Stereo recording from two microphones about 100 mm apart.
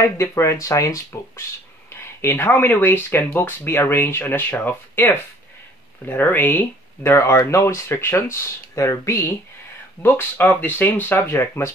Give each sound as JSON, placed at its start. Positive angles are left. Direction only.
{"t": 0.0, "sound": "speech", "side_deg": 30}